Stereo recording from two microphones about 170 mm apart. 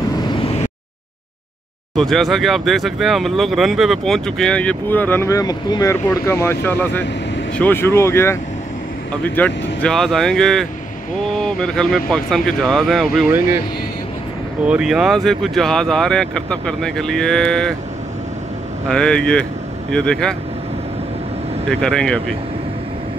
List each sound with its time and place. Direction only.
2.0 s speech: centre (ahead or behind)
14.6 s speech: 5° right (ahead or behind)
18.9 s speech: 5° left (ahead or behind)
21.6 s speech: 5° left (ahead or behind)